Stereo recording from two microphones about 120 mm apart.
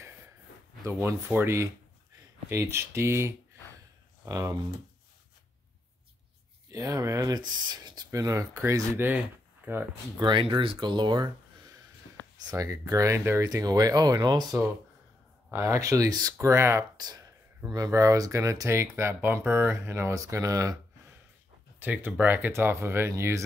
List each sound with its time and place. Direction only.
0.8 s speech: 20° right (ahead or behind)
6.7 s speech: 25° right (ahead or behind)
10.2 s speech: 45° right (ahead or behind)
12.4 s speech: 30° right (ahead or behind)
15.5 s speech: 25° right (ahead or behind)
21.7 s speech: 15° right (ahead or behind)